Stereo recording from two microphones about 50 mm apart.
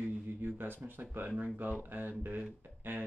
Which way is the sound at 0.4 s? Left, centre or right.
Right.